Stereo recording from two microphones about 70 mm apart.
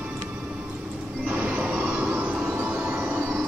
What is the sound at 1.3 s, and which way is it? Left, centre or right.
Music, centre.